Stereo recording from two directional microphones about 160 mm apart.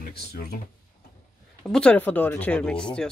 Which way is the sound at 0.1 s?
80° left.